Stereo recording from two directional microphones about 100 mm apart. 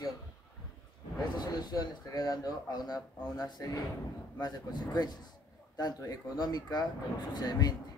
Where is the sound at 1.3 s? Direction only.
45° left (ahead or behind).